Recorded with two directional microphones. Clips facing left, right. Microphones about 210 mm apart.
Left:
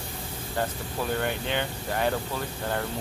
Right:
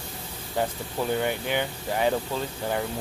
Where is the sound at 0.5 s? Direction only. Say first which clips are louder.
Right 3 dB; 15° right (ahead or behind).